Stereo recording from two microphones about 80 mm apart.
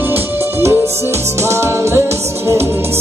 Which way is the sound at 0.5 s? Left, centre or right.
Right.